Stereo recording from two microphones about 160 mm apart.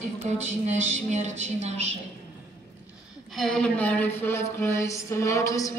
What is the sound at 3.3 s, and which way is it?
Speech, 5° left (ahead or behind).